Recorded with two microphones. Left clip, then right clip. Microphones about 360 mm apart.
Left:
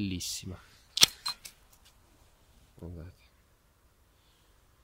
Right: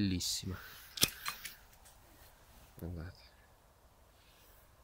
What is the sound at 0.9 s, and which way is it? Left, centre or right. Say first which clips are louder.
Camera: left 10 dB; left.